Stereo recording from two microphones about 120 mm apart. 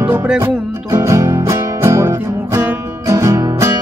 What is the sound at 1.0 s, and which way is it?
Music, 25° right (ahead or behind).